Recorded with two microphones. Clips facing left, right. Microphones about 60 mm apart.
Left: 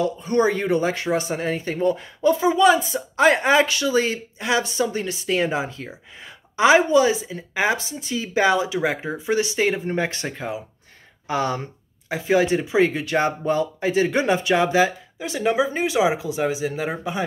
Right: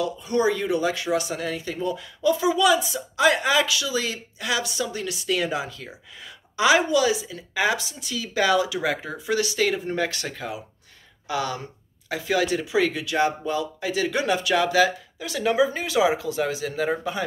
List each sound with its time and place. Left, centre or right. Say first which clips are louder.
0.0 s speech: left 3 dB; left; by 17.2 s centre